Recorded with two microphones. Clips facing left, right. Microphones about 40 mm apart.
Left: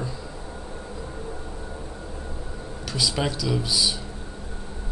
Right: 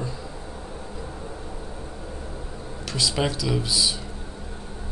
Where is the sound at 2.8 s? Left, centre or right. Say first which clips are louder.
Right 1 dB; centre.